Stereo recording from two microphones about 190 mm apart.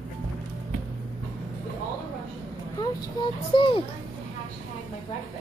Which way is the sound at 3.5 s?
25° left (ahead or behind).